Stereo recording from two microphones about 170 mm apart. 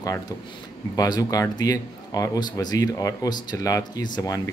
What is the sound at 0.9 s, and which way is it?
Speech, 20° left (ahead or behind).